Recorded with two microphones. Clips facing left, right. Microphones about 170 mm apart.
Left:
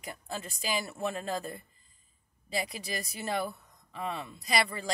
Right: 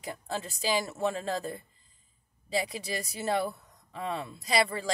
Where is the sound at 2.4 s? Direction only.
35° right (ahead or behind).